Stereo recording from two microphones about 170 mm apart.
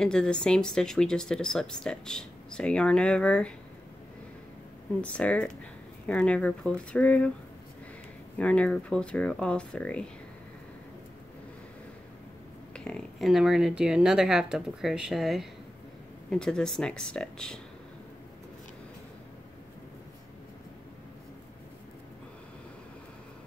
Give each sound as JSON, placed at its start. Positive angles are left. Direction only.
{"t": 0.0, "sound": "speech", "side_deg": 5}
{"t": 5.0, "sound": "speech", "side_deg": 5}
{"t": 8.4, "sound": "speech", "side_deg": 5}
{"t": 12.7, "sound": "speech", "side_deg": 5}